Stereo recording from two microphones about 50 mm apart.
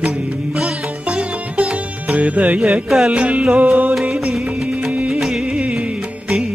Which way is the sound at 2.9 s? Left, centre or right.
Centre.